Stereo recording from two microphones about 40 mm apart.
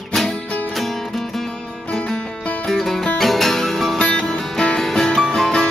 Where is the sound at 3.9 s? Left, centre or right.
Left.